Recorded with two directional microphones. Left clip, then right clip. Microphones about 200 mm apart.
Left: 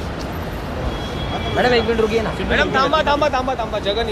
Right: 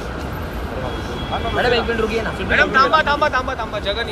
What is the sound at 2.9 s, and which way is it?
Speech, 35° left (ahead or behind).